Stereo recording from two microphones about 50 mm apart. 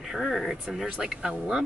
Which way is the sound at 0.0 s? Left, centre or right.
Centre.